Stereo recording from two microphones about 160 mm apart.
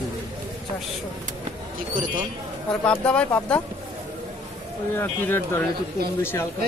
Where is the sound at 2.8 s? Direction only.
5° left (ahead or behind).